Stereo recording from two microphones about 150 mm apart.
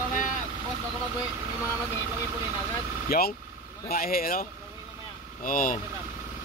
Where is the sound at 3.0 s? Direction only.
80° left.